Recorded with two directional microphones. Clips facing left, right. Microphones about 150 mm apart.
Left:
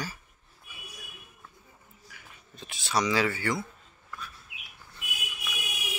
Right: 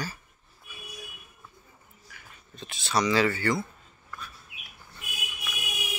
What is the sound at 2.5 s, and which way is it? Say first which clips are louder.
Speech: right 1 dB; 10° left (ahead or behind).